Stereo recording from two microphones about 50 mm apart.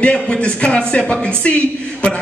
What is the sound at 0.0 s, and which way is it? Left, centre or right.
A man's voice, left.